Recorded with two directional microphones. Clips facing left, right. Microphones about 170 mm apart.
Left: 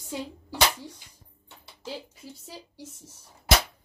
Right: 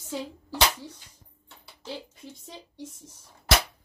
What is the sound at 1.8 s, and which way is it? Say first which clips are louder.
Speech: even; 5° left (ahead or behind).